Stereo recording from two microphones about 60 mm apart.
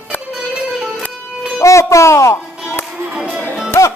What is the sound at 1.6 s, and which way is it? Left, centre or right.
Music, left.